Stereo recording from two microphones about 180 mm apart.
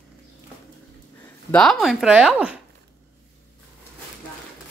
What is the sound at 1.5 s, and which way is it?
Speech, centre (ahead or behind).